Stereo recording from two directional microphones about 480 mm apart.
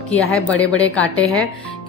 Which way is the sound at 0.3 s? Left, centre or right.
Centre.